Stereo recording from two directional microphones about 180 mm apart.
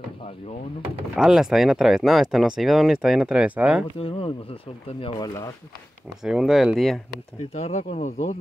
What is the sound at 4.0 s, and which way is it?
Speech, 30° left (ahead or behind).